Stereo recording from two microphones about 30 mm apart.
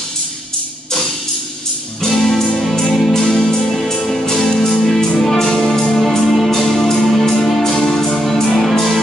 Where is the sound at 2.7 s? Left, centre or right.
Left.